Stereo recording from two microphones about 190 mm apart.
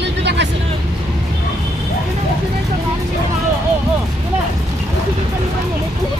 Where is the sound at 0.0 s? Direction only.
65° right (ahead or behind).